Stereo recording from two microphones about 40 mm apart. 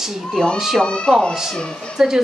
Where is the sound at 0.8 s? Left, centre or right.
Left.